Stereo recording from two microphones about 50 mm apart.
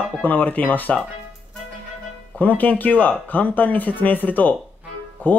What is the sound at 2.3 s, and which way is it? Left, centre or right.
Speech, left.